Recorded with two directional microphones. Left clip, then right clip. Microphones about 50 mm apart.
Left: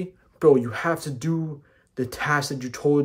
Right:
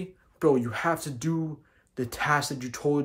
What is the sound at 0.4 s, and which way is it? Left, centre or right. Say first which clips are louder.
Speech: left 6 dB; centre.